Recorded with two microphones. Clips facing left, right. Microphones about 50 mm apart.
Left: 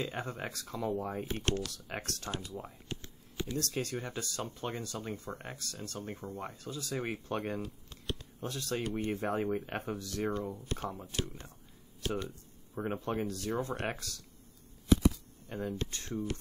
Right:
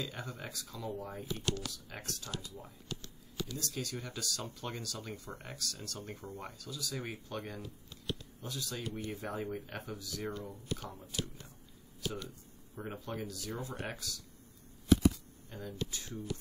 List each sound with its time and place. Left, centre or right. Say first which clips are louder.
0.0 s speech: left 5 dB; left
2.3 s a sound: left 4 dB; left
3.7 s speech: left 4 dB; left
15.4 s speech: left 5 dB; left